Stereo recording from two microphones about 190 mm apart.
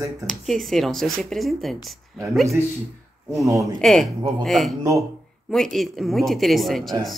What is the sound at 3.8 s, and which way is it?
Speech, centre (ahead or behind).